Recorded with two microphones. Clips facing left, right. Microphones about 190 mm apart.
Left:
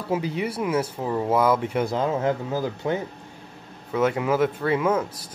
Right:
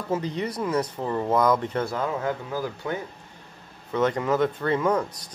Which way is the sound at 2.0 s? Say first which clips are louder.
Left 4 dB; 25° left (ahead or behind).